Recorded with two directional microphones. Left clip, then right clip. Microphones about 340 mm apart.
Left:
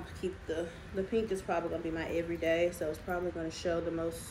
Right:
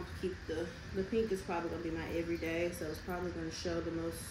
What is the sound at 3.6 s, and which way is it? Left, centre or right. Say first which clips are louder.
Speech: left 6 dB; centre.